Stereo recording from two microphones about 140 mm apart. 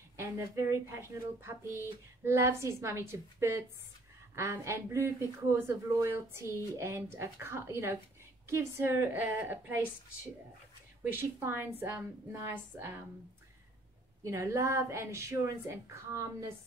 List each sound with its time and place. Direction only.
0.2 s a woman's voice: 20° right (ahead or behind)
11.1 s a woman's voice: 15° right (ahead or behind)
14.2 s a woman's voice: 20° right (ahead or behind)